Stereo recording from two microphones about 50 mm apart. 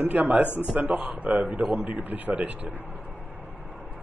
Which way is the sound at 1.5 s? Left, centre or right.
Right.